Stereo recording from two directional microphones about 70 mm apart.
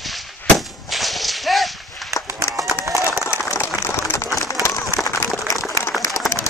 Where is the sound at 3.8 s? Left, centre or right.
Left.